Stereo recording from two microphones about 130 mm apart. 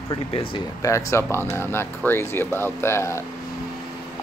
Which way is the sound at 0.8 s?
25° left (ahead or behind).